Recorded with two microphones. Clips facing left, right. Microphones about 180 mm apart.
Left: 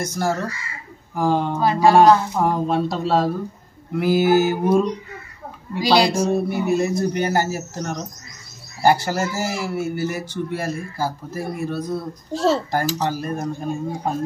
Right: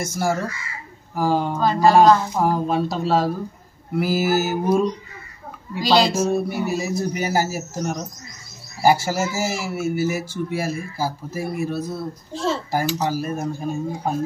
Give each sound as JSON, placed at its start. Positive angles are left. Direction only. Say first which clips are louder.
{"t": 0.0, "sound": "speech", "louder": "even", "side_deg": -10}
{"t": 1.6, "sound": "speech", "louder": "left 1 dB", "side_deg": 10}
{"t": 2.3, "sound": "speech", "louder": "even", "side_deg": 0}
{"t": 5.8, "sound": "speech", "louder": "left 1 dB", "side_deg": 10}
{"t": 6.1, "sound": "speech", "louder": "left 1 dB", "side_deg": -5}
{"t": 12.3, "sound": "a child's voice", "louder": "left 5 dB", "side_deg": 40}
{"t": 12.9, "sound": "speech", "louder": "even", "side_deg": -5}